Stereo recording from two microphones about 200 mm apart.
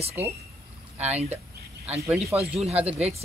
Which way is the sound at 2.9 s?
30° right (ahead or behind).